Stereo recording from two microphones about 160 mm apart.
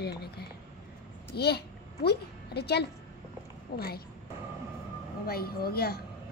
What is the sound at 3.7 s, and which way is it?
Speech, 75° left (ahead or behind).